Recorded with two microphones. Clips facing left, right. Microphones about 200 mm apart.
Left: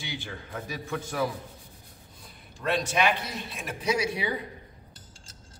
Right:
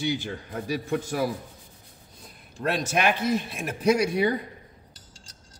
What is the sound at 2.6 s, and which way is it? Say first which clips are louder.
Speech: right 1 dB; 50° right (ahead or behind).